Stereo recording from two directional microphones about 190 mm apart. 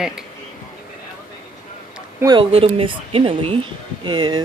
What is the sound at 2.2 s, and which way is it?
Speech, 20° right (ahead or behind).